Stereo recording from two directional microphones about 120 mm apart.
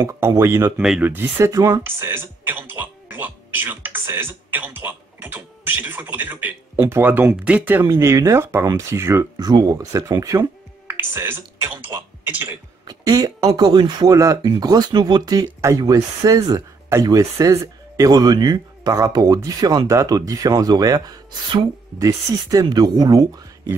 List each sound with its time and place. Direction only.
0.0 s speech: 25° right (ahead or behind)
1.5 s speech: 30° right (ahead or behind)
10.9 s speech: 20° right (ahead or behind)
12.8 s speech: 30° right (ahead or behind)